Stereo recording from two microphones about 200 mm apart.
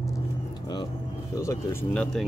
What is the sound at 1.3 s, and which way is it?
Speech, 15° left (ahead or behind).